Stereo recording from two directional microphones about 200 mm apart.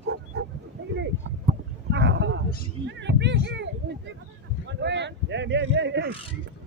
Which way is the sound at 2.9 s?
60° right (ahead or behind).